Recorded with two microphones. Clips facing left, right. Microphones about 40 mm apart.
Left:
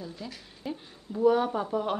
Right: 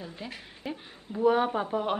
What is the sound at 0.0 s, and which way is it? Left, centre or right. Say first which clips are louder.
A woman's voice: even; right.